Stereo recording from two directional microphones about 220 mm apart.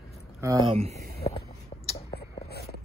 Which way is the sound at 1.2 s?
25° left (ahead or behind).